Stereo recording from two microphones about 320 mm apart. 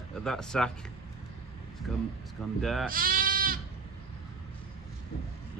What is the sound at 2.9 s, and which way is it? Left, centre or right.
Sheep, right.